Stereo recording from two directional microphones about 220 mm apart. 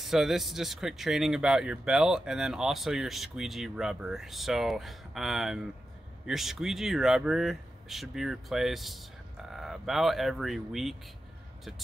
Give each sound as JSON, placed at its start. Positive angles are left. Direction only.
{"t": 0.0, "sound": "speech", "side_deg": 0}